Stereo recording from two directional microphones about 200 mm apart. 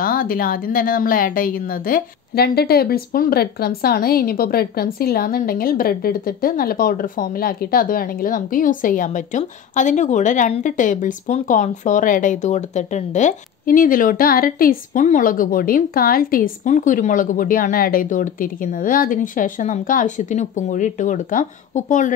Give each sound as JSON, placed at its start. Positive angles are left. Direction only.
{"t": 0.0, "sound": "a woman's voice", "side_deg": 45}